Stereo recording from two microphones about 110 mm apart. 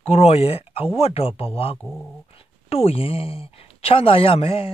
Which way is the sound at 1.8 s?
10° left (ahead or behind).